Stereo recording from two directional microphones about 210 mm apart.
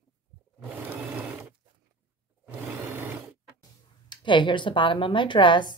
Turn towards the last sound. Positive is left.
turn(degrees=20)  # may be behind; listen again after turning